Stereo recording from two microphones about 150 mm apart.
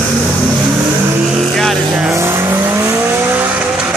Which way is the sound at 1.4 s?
Centre (ahead or behind).